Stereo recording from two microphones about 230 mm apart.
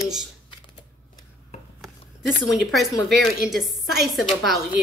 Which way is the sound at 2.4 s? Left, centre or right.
Centre.